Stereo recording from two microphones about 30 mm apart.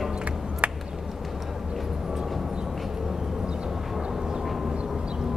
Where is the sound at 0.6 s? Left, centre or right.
Right.